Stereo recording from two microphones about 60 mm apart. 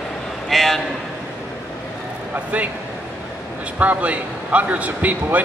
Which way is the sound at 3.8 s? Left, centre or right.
Right.